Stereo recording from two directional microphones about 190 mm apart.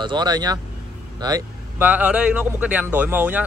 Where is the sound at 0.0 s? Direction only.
25° right (ahead or behind).